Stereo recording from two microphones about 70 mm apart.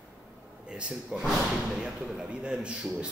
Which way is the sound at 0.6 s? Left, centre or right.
Centre.